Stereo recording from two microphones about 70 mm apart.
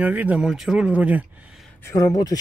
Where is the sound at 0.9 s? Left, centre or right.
Right.